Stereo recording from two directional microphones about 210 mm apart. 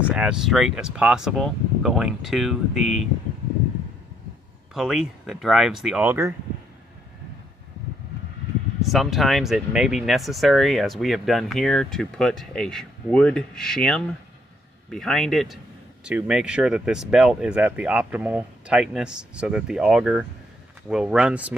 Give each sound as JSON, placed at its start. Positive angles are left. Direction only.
{"t": 0.1, "sound": "speech", "side_deg": -5}
{"t": 4.7, "sound": "speech", "side_deg": 0}
{"t": 8.8, "sound": "speech", "side_deg": 0}